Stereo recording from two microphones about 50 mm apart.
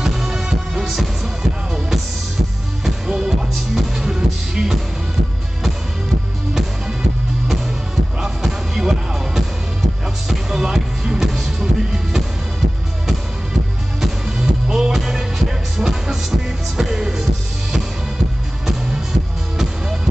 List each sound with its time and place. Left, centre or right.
0.0 s music: centre
3.1 s music: centre
8.2 s music: centre
14.0 s music: centre